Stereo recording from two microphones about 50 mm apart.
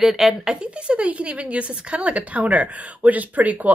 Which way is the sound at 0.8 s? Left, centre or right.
Right.